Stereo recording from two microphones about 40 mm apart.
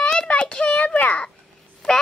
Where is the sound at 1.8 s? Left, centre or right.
Left.